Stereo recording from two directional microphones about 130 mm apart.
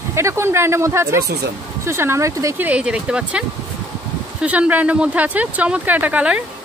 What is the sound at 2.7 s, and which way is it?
Speech, 10° right (ahead or behind).